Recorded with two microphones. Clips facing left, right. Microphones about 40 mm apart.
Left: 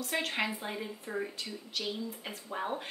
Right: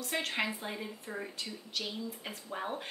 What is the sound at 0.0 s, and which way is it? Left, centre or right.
Speech, centre.